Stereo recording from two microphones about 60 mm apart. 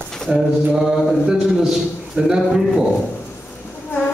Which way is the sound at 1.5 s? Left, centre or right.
Centre.